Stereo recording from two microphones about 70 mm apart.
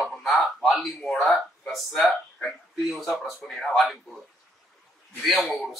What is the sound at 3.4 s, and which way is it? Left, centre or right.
Speech, centre.